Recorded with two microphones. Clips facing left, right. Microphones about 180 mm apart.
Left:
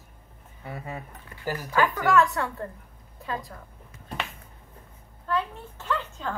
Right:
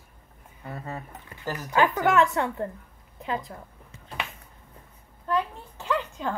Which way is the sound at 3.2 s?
20° right (ahead or behind).